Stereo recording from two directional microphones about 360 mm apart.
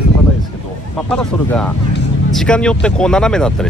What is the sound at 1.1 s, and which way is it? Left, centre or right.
Speech, centre.